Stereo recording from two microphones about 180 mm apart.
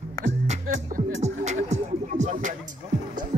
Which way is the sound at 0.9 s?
40° right (ahead or behind).